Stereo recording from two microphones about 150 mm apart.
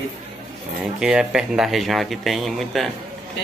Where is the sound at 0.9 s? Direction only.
5° right (ahead or behind).